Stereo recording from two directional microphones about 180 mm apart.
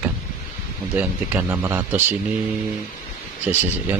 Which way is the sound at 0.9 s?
10° right (ahead or behind).